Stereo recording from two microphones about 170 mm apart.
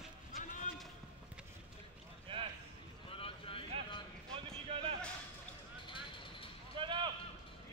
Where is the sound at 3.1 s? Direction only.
35° left (ahead or behind).